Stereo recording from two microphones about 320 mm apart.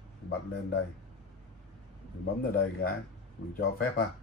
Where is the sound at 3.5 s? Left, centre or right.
Left.